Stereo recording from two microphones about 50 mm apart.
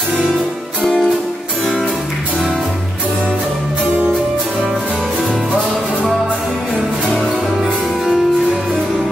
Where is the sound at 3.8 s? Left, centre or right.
Right.